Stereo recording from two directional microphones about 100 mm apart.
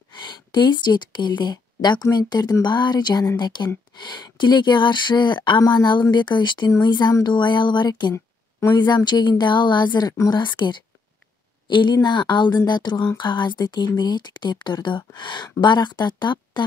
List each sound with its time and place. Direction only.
0.1 s a woman's voice: 50° left (ahead or behind)
8.1 s a sound: 25° left (ahead or behind)
8.7 s speech: 50° left (ahead or behind)